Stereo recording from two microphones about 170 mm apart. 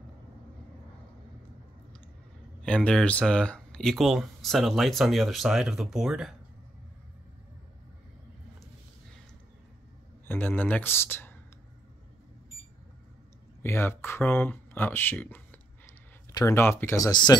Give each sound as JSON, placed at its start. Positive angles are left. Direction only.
{"t": 2.6, "sound": "speech", "side_deg": 5}
{"t": 10.2, "sound": "speech", "side_deg": 10}
{"t": 13.6, "sound": "speech", "side_deg": 15}